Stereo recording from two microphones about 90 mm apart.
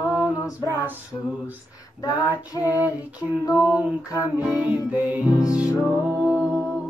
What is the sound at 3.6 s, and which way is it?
Music, 15° right (ahead or behind).